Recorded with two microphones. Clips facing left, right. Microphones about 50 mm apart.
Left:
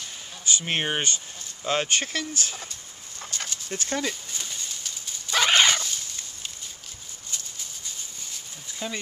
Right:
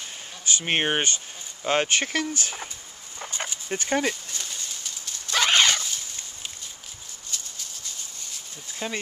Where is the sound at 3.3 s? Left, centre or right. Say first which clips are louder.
Right 3 dB; centre.